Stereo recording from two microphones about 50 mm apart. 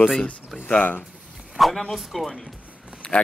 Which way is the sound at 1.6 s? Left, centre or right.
Centre.